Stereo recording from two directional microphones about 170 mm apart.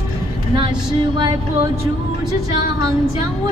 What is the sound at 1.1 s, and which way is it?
Music, 25° right (ahead or behind).